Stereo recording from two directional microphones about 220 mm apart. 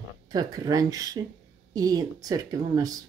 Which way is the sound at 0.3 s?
15° right (ahead or behind).